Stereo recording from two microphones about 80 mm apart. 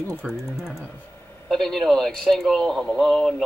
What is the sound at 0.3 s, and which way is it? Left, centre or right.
Speech, centre.